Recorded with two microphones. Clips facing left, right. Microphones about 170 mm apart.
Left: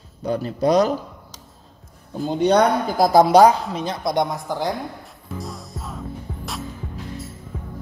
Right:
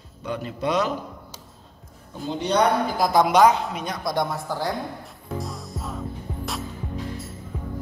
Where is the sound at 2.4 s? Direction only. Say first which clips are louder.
Left 4 dB; 45° left (ahead or behind); by 4.7 s 15° left (ahead or behind).